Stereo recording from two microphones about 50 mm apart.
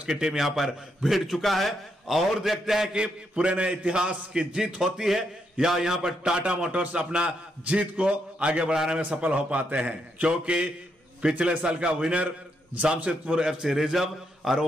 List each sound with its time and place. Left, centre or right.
0.1 s a man's voice: centre
3.0 s a man's voice: right
8.7 s a man's voice: centre
9.1 s a man's voice: right; by 14.7 s centre